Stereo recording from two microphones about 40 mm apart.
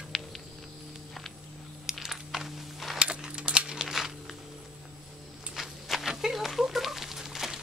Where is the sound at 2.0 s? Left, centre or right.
Centre.